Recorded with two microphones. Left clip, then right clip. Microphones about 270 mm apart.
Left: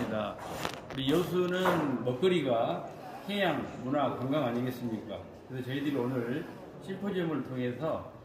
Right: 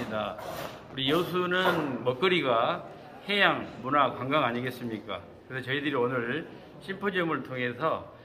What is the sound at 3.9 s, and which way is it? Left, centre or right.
Speech, centre.